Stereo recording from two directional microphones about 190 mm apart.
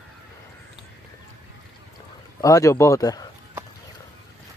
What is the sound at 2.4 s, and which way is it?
Speech, 15° left (ahead or behind).